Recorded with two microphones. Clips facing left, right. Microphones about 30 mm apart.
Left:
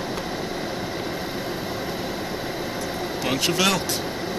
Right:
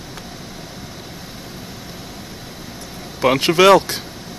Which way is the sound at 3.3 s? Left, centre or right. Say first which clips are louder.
Right 11 dB; right.